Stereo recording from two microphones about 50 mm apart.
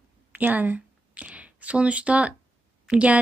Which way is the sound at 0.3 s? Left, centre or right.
Right.